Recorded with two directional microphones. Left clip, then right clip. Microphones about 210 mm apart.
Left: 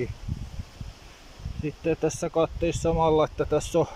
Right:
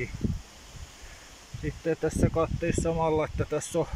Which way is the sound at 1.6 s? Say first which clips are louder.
Left 3 dB; 10° left (ahead or behind).